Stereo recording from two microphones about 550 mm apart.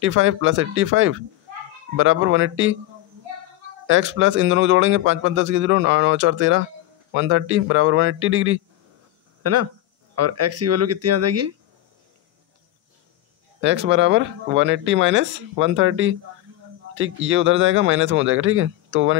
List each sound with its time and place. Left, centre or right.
0.0 s speech: right
3.8 s speech: right
13.6 s speech: centre